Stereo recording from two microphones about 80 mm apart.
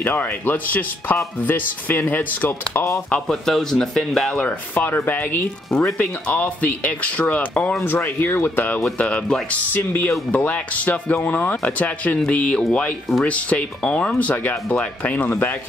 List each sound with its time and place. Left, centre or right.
0.0 s speech: left
3.1 s speech: centre
4.5 s speech: left
5.7 s speech: centre; by 8.8 s left
8.9 s speech: centre
9.8 s speech: left
10.3 s speech: centre